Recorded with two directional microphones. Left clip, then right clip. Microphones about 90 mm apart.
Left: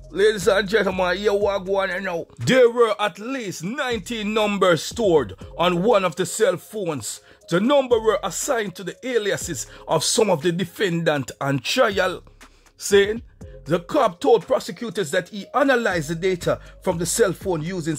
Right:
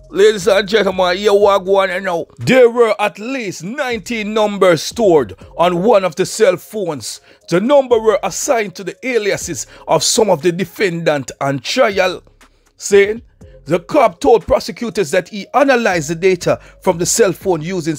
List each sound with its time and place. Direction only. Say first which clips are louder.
0.1 s speech: right 8 dB; 30° right (ahead or behind)
0.4 s speech: right 6 dB; 20° right (ahead or behind)
1.3 s a man's voice: right 10 dB; 50° right (ahead or behind)
1.8 s speech: right 8 dB; 35° right (ahead or behind)